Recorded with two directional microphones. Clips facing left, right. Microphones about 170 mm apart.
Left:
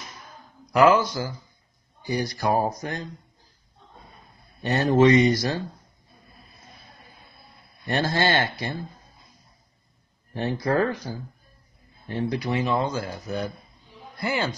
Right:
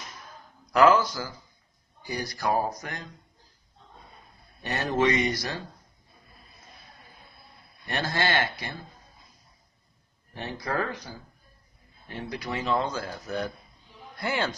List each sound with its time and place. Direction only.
0.8 s speech: 20° left (ahead or behind)
4.6 s speech: 25° left (ahead or behind)
7.9 s speech: 30° left (ahead or behind)
10.3 s speech: 35° left (ahead or behind); by 14.5 s centre (ahead or behind)